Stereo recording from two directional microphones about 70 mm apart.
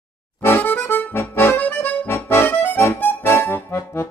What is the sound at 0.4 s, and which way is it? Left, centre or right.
Accordion, left.